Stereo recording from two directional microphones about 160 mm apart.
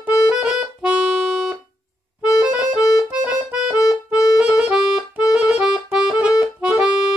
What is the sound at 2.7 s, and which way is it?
Accordion, 20° left (ahead or behind).